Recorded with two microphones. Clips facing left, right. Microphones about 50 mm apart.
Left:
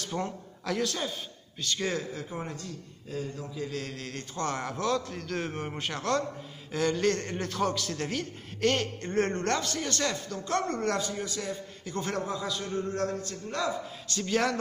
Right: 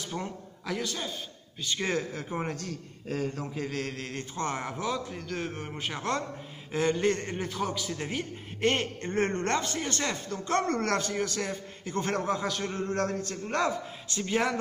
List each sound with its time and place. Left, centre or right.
0.0 s a man's voice: centre
1.6 s a man's voice: centre
1.9 s speech: right
2.5 s a man's voice: right; by 5.9 s centre
5.9 s a man's voice: right
10.7 s a man's voice: right
14.0 s a man's voice: right